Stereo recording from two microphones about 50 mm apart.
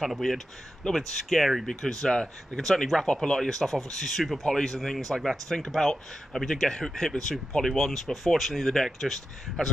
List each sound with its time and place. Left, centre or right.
0.0 s speech: centre
2.0 s speech: centre